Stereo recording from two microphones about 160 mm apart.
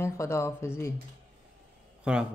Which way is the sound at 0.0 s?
15° left (ahead or behind).